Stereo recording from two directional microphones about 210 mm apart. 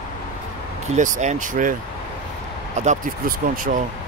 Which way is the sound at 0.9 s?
35° right (ahead or behind).